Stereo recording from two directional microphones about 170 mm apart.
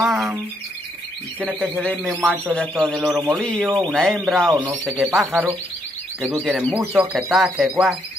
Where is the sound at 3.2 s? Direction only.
15° right (ahead or behind).